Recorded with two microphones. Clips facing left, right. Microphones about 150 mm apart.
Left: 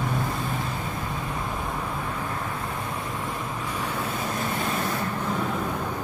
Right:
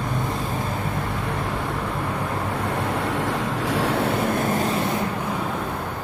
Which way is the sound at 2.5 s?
75° right (ahead or behind).